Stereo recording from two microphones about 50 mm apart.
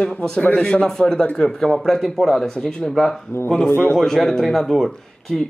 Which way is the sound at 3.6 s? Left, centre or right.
Left.